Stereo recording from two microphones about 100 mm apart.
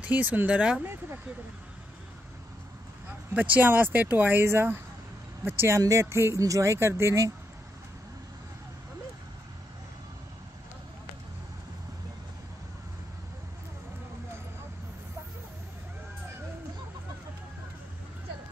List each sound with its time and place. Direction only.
0.0 s speech: 15° right (ahead or behind)
3.3 s speech: 15° right (ahead or behind)